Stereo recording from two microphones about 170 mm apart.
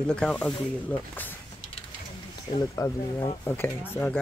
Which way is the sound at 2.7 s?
20° left (ahead or behind).